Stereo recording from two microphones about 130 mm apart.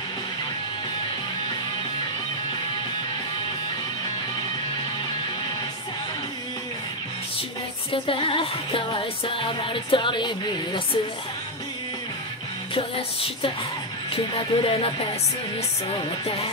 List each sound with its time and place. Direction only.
7.9 s music: 45° left (ahead or behind)
12.7 s music: 45° left (ahead or behind)